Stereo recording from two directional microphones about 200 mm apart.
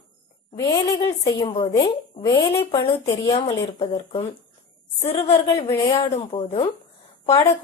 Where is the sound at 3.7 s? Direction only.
30° left (ahead or behind).